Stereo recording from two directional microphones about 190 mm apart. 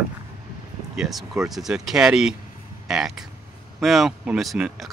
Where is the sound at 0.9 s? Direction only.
Centre (ahead or behind).